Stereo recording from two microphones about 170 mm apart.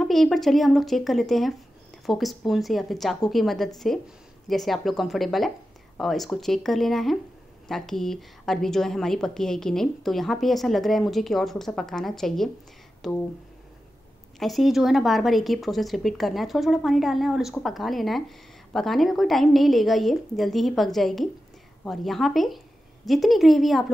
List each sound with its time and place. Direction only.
0.0 s a woman's voice: centre (ahead or behind)
14.4 s a woman's voice: centre (ahead or behind)